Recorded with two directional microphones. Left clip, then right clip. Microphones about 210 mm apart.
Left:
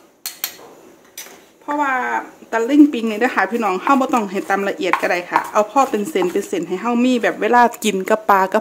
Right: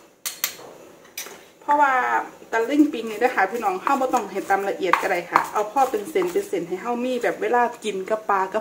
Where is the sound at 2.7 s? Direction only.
45° left (ahead or behind).